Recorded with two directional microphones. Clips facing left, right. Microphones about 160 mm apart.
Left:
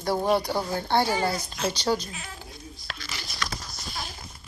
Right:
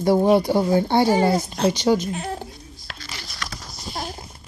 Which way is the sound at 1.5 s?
60° right (ahead or behind).